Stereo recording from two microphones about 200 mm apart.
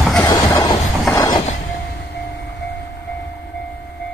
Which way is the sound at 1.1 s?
15° left (ahead or behind).